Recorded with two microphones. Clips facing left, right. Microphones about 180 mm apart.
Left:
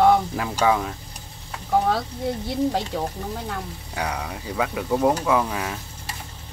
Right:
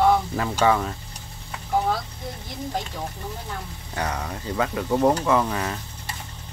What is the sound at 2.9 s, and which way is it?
Speech, 60° left (ahead or behind).